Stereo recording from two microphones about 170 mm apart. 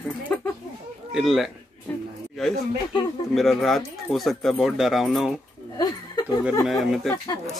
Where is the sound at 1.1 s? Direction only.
Centre (ahead or behind).